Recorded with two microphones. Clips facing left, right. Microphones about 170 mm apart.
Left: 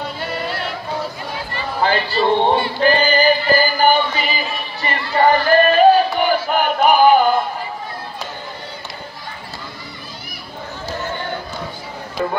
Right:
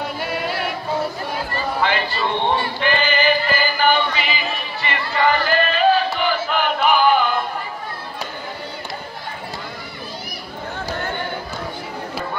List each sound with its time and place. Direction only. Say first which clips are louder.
0.2 s music: even; 10° right (ahead or behind)
1.8 s a sound: left 5 dB; 35° left (ahead or behind)
2.8 s music: left 6 dB; 35° left (ahead or behind)